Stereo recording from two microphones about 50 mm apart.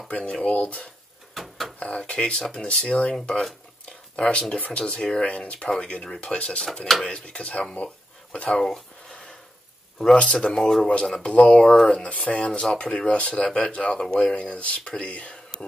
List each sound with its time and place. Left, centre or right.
0.2 s speech: left
1.3 s a sound: centre
1.8 s speech: left
6.6 s speech: centre
7.1 s speech: left
8.5 s speech: centre
10.2 s speech: centre
13.9 s speech: centre
14.3 s speech: left